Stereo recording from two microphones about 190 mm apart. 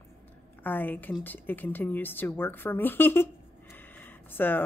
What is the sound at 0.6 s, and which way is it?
A woman's voice, 10° left (ahead or behind).